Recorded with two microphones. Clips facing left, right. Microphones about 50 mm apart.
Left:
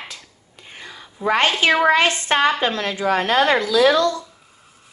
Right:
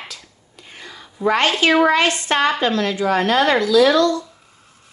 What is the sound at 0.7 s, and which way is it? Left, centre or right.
Whispering, left.